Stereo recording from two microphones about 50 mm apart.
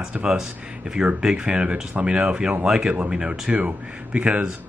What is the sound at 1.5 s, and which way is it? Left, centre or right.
Speech, right.